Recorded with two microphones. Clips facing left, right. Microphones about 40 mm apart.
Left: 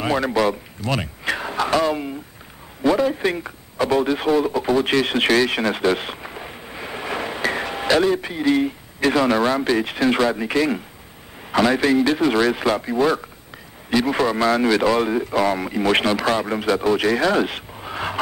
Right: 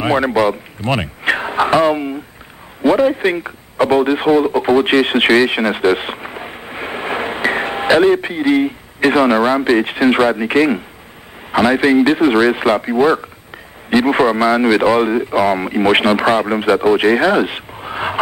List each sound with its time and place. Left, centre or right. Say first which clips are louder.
0.0 s a man's voice: right 5 dB; right
0.7 s a man's voice: right 6 dB; right